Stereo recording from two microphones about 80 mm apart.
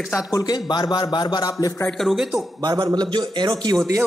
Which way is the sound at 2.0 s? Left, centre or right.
Centre.